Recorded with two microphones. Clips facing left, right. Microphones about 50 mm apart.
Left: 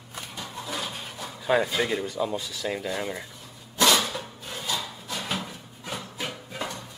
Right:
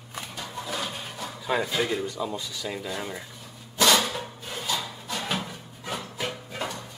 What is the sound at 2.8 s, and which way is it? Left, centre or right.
Speech, centre.